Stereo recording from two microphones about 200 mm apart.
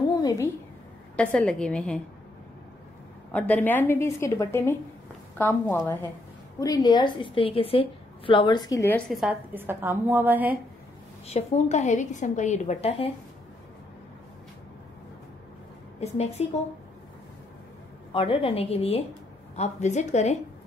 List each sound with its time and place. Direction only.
0.2 s a sound: 15° left (ahead or behind)
1.1 s a woman's voice: 5° left (ahead or behind)
3.3 s a woman's voice: 5° left (ahead or behind); by 10.6 s 10° right (ahead or behind)
11.2 s a woman's voice: 35° left (ahead or behind)
16.0 s a woman's voice: 30° left (ahead or behind)
18.1 s a woman's voice: 25° left (ahead or behind)